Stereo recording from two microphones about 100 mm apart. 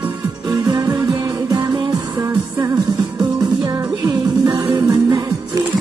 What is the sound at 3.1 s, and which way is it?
Music, 45° right (ahead or behind).